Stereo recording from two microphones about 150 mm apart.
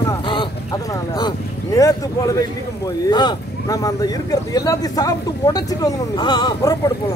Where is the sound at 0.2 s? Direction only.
35° left (ahead or behind).